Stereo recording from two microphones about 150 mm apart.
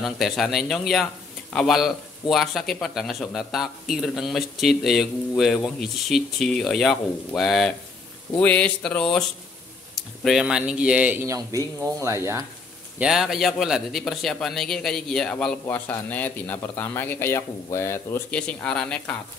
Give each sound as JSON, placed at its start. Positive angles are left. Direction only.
{"t": 0.0, "sound": "a man's voice", "side_deg": 0}
{"t": 13.0, "sound": "a man's voice", "side_deg": 0}